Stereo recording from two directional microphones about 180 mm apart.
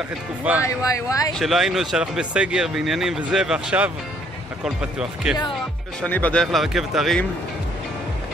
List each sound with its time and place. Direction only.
0.7 s speech: 20° left (ahead or behind)
1.4 s speech: centre (ahead or behind)
6.0 s speech: 10° left (ahead or behind)